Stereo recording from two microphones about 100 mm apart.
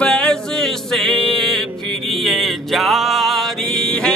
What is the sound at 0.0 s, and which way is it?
Music, 10° left (ahead or behind).